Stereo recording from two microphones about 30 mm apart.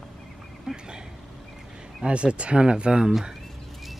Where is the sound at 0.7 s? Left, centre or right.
Right.